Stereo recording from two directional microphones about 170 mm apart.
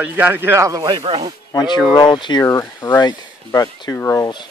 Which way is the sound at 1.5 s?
25° left (ahead or behind).